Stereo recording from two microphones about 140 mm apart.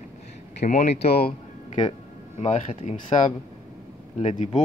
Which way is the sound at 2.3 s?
50° left (ahead or behind).